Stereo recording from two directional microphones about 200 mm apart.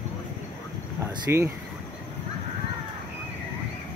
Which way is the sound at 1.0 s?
15° right (ahead or behind).